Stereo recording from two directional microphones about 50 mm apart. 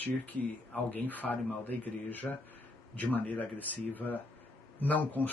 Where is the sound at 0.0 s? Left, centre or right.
Left.